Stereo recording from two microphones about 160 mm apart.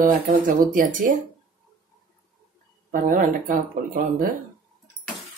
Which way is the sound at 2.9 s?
55° right (ahead or behind).